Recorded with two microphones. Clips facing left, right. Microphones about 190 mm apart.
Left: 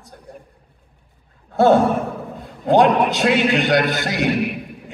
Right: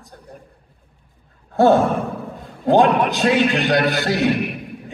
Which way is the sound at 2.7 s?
15° left (ahead or behind).